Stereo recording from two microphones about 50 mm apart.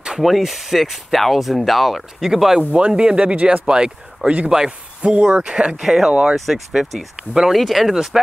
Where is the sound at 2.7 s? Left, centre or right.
Right.